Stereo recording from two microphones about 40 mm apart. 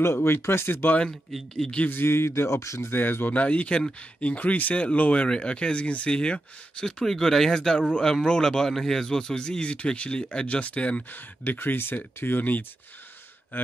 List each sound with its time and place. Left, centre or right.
0.0 s speech: left
1.3 s speech: centre
1.9 s speech: left
2.9 s speech: left
3.3 s speech: left
7.1 s speech: centre; by 11.1 s left
11.4 s speech: left